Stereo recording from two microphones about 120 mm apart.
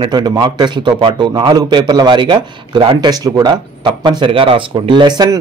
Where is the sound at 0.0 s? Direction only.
40° right (ahead or behind).